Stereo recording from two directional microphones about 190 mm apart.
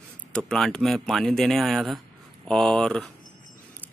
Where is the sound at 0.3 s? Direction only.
5° left (ahead or behind).